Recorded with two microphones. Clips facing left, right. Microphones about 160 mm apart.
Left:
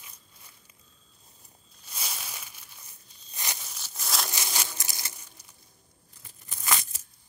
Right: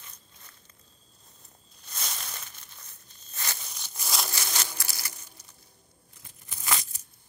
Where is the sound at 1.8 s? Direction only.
5° left (ahead or behind).